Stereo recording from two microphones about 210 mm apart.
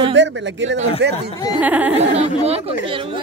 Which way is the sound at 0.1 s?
60° right (ahead or behind).